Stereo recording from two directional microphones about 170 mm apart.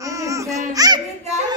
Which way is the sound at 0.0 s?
20° right (ahead or behind).